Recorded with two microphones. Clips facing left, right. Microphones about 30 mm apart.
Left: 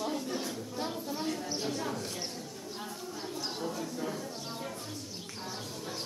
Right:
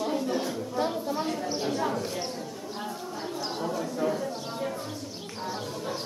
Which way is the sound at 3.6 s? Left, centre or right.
Centre.